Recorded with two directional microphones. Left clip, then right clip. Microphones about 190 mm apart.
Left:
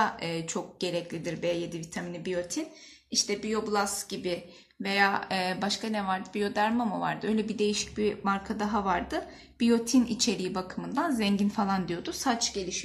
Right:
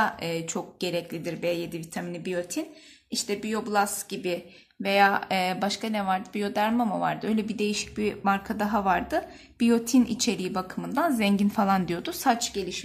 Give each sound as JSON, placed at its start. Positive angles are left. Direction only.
{"t": 0.0, "sound": "speech", "side_deg": -30}